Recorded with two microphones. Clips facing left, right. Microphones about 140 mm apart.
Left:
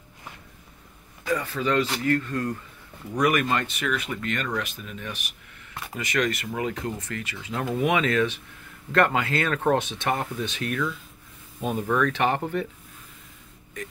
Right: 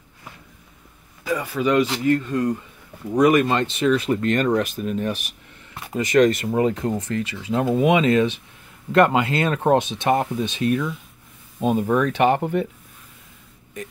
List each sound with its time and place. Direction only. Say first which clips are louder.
1.2 s speech: right 4 dB; 10° right (ahead or behind)